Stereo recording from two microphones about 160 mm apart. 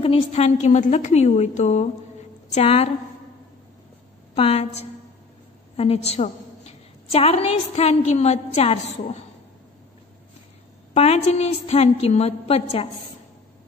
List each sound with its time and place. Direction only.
0.0 s a woman's voice: 40° left (ahead or behind)
4.4 s a woman's voice: 40° left (ahead or behind)
10.9 s a woman's voice: 40° left (ahead or behind)